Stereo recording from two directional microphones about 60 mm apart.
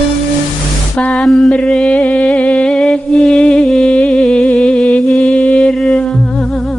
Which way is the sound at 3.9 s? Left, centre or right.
Centre.